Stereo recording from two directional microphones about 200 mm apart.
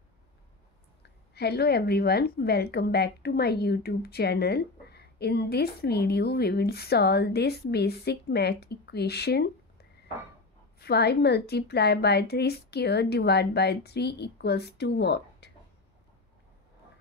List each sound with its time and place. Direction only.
1.3 s a woman's voice: 55° left (ahead or behind)
10.8 s a woman's voice: 55° left (ahead or behind)